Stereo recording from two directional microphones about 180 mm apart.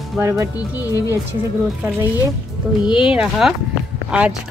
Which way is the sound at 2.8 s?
5° right (ahead or behind).